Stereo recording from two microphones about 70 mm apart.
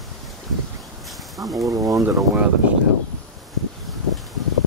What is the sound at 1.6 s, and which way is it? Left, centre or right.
Speech, right.